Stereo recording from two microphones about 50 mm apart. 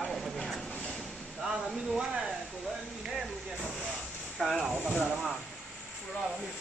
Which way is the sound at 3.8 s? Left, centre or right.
Centre.